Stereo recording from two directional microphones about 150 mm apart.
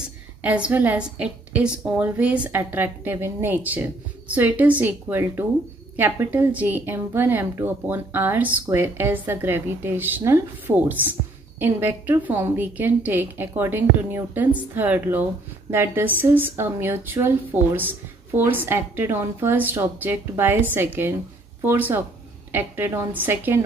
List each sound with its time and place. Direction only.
0.4 s a woman's voice: 10° right (ahead or behind)